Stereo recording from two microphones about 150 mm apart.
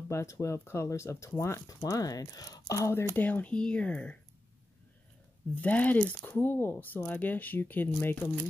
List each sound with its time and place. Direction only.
0.1 s speech: 20° left (ahead or behind)
5.5 s speech: 10° left (ahead or behind)